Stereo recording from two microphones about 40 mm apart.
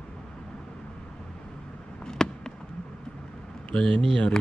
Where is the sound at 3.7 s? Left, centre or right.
Left.